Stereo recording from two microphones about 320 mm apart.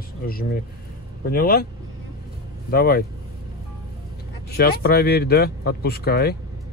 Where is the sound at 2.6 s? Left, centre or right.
Left.